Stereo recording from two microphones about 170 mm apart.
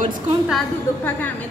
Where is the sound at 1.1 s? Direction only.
10° left (ahead or behind).